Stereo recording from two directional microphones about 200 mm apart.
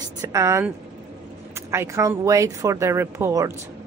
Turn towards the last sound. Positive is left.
turn(degrees=-15)  # may be behind; listen again after turning